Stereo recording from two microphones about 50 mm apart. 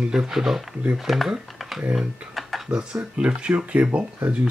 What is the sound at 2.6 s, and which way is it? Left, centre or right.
Speech, centre.